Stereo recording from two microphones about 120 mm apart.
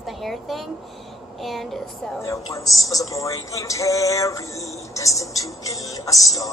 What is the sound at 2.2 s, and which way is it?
Speech, 25° left (ahead or behind).